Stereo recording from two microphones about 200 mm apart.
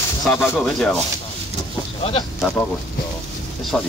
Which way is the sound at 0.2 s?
Centre (ahead or behind).